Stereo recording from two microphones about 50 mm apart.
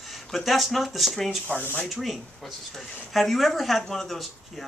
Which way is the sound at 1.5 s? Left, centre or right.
Left.